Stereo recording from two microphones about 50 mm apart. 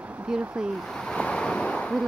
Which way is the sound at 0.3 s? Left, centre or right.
Centre.